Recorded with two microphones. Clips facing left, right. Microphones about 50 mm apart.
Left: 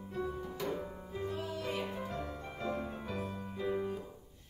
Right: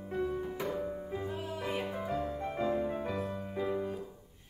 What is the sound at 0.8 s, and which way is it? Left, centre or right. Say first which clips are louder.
Music: right 4 dB; centre.